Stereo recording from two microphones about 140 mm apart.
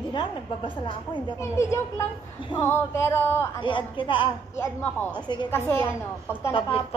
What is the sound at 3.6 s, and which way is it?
Speech, 35° left (ahead or behind).